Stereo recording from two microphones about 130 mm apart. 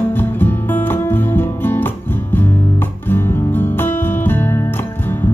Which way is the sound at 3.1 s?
15° left (ahead or behind).